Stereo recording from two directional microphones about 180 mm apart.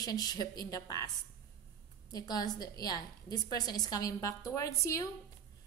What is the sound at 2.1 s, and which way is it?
A woman's voice, 20° left (ahead or behind).